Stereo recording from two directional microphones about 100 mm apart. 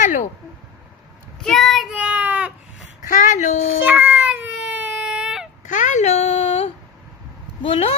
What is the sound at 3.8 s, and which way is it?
Baby cry, 15° right (ahead or behind).